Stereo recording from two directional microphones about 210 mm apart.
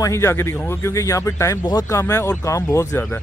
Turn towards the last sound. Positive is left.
turn(degrees=15)  # may be behind; listen again after turning